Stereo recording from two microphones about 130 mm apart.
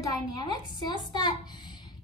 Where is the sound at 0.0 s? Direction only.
35° left (ahead or behind).